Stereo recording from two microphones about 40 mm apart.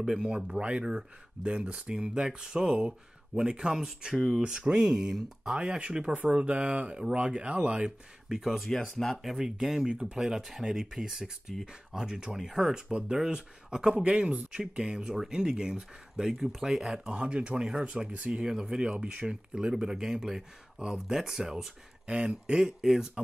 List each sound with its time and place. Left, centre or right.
0.0 s speech: centre
0.6 s speech: right
8.3 s speech: centre
9.8 s speech: right
10.1 s speech: centre
12.4 s speech: centre
13.9 s speech: right
14.8 s speech: right
17.1 s speech: right
17.8 s speech: right
18.5 s speech: centre
22.0 s speech: right; by 23.0 s centre